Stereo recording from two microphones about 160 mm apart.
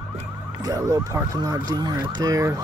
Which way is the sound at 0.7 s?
25° right (ahead or behind).